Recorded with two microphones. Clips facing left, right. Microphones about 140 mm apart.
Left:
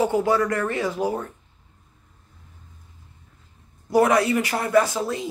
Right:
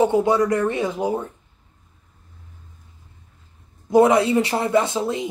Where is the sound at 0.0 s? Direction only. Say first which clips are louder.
Right 3 dB; 20° right (ahead or behind).